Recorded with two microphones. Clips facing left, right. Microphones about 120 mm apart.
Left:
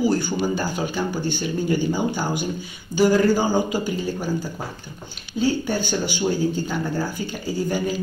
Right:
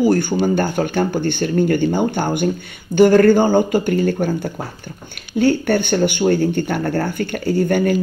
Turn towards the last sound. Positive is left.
turn(degrees=-65)  # may be behind; listen again after turning